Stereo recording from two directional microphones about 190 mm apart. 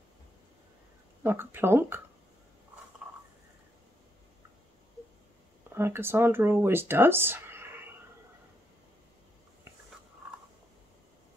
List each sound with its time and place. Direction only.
1.2 s speech: 10° right (ahead or behind)
5.8 s speech: 10° right (ahead or behind)